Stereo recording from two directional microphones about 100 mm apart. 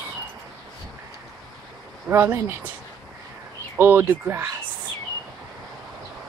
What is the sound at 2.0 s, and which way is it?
Speech, 20° right (ahead or behind).